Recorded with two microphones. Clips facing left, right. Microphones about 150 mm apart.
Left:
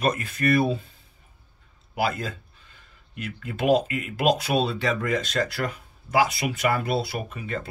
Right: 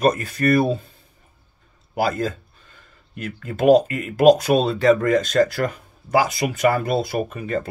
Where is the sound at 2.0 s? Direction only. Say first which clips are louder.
Right 5 dB; 40° right (ahead or behind).